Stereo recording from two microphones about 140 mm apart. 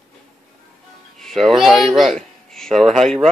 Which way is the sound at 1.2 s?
Centre (ahead or behind).